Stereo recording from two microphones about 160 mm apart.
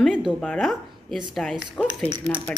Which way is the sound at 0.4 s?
5° left (ahead or behind).